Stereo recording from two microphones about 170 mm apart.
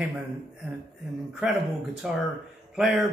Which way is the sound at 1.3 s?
Centre (ahead or behind).